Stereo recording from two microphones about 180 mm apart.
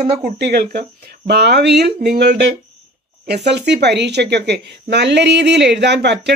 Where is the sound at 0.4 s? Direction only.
60° right (ahead or behind).